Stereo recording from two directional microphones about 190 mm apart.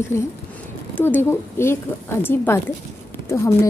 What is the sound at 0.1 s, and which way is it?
A woman's voice, 15° left (ahead or behind).